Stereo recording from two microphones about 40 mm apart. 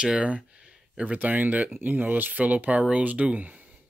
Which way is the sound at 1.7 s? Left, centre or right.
Right.